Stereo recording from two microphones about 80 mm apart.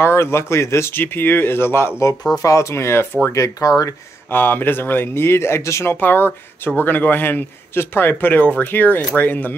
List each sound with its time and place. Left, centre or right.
0.0 s speech: left
3.3 s speech: left
4.3 s a man's voice: left
5.9 s a man's voice: left